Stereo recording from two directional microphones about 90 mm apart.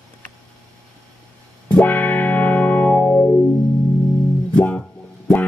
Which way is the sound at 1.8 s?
20° left (ahead or behind).